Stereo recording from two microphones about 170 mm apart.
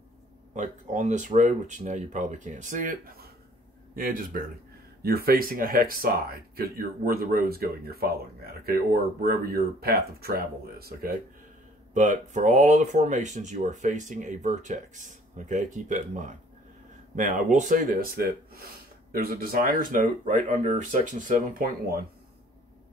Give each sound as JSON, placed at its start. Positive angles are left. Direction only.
{"t": 0.6, "sound": "speech", "side_deg": -45}
{"t": 11.9, "sound": "speech", "side_deg": -45}